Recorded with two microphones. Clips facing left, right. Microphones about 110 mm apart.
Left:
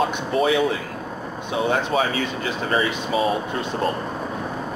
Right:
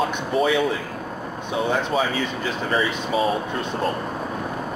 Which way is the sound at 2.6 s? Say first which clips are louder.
Left 1 dB; centre (ahead or behind).